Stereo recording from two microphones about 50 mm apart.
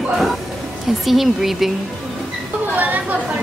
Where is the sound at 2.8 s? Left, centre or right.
Right.